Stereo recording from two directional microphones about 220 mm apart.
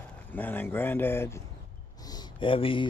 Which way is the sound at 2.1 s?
25° left (ahead or behind).